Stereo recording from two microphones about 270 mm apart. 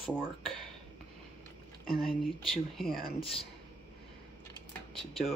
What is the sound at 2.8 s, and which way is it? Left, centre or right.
Speech, left.